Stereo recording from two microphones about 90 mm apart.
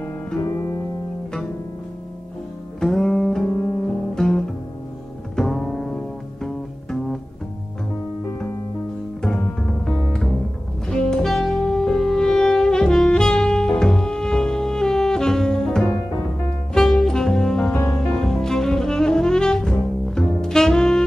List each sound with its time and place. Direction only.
0.4 s music: 30° left (ahead or behind)
2.8 s music: 5° left (ahead or behind)
5.3 s double bass: 5° left (ahead or behind)
9.6 s music: 5° left (ahead or behind)
10.9 s saxophone: 5° left (ahead or behind)
16.7 s music: 5° left (ahead or behind)